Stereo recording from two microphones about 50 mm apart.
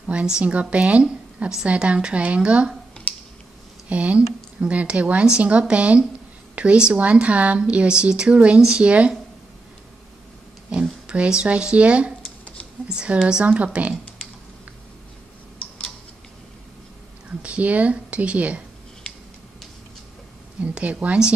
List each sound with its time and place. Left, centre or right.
0.1 s speech: right
3.9 s speech: right
10.7 s speech: right
17.4 s speech: right
20.6 s speech: right